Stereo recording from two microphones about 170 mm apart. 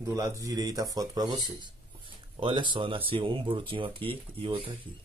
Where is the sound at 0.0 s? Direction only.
20° right (ahead or behind).